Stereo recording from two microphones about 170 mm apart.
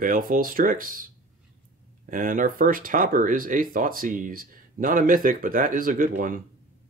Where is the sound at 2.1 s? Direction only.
55° right (ahead or behind).